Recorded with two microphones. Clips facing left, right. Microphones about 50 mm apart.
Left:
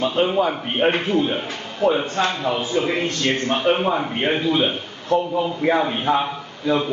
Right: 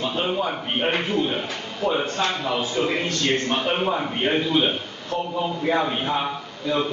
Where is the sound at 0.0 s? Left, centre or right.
Left.